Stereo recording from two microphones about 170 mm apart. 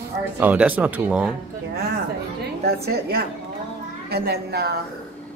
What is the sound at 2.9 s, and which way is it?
A woman's voice, 70° right (ahead or behind).